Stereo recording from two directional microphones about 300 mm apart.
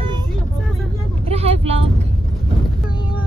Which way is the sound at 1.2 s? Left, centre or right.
Centre.